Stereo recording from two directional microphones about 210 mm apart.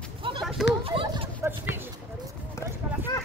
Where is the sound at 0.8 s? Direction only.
25° right (ahead or behind).